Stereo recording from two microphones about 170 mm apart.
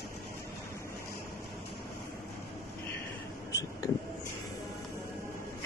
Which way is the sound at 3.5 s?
20° left (ahead or behind).